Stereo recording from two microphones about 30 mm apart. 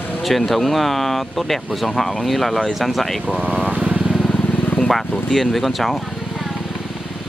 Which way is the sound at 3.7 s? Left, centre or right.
Right.